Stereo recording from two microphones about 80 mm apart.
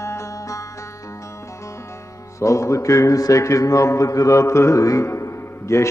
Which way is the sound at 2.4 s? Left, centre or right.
Left.